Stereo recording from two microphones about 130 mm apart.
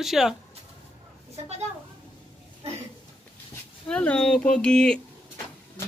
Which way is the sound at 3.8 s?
10° left (ahead or behind).